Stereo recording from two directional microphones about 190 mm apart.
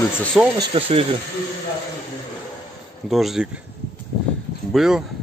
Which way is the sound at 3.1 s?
Centre (ahead or behind).